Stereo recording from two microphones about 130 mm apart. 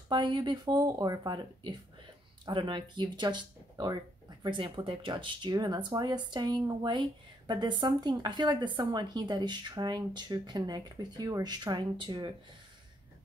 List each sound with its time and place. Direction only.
0.1 s speech: 35° right (ahead or behind)